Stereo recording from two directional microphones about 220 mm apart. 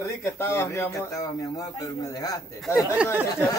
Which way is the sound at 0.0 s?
10° left (ahead or behind).